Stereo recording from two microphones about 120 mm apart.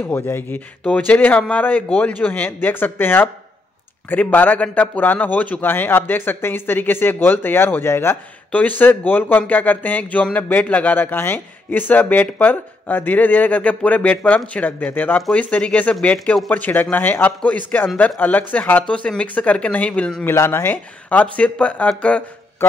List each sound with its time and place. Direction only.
0.0 s a man's voice: 15° left (ahead or behind)
20.2 s a man's voice: 20° left (ahead or behind)